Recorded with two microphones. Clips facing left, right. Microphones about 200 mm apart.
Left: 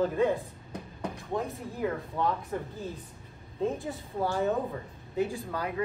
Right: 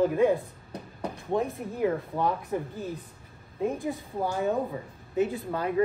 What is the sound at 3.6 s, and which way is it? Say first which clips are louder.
A woman's voice: right 2 dB; 15° right (ahead or behind).